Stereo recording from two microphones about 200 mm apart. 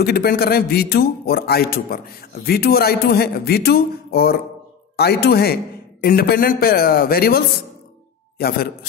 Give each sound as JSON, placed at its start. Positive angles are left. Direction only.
{"t": 0.0, "sound": "a man's voice", "side_deg": 50}